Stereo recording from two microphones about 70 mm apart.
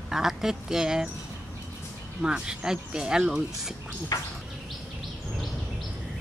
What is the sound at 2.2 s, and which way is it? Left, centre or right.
Speech, centre.